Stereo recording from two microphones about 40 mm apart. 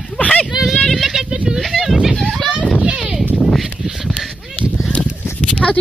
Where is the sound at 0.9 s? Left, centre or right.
Centre.